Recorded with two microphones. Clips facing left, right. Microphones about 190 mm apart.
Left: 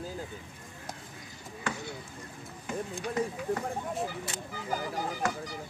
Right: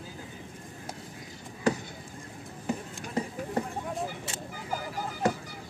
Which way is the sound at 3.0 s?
45° right (ahead or behind).